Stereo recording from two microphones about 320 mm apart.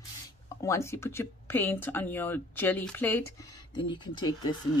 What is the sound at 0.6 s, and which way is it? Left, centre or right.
Speech, centre.